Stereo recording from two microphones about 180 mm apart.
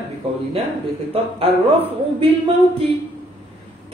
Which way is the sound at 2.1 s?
30° right (ahead or behind).